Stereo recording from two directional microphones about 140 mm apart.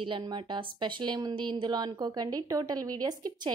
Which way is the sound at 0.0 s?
35° right (ahead or behind).